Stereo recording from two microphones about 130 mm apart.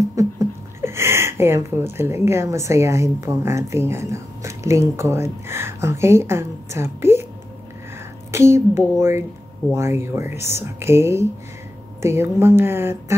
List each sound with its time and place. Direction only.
0.0 s speech: 25° right (ahead or behind)
8.3 s a woman's voice: 20° right (ahead or behind)